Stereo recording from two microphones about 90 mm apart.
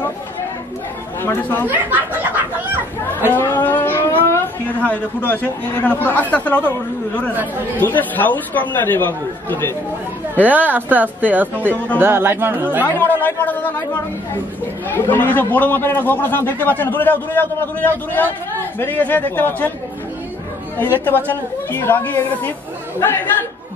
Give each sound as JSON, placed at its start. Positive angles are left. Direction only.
{"t": 1.2, "sound": "a man's voice", "side_deg": 20}
{"t": 1.7, "sound": "a sound", "side_deg": -20}
{"t": 3.3, "sound": "a sound", "side_deg": 25}
{"t": 5.8, "sound": "a man's voice", "side_deg": 20}
{"t": 7.8, "sound": "a man's voice", "side_deg": 20}
{"t": 10.4, "sound": "speech", "side_deg": -20}
{"t": 12.8, "sound": "a man's voice", "side_deg": 20}
{"t": 14.9, "sound": "a man's voice", "side_deg": 20}
{"t": 20.8, "sound": "a man's voice", "side_deg": 20}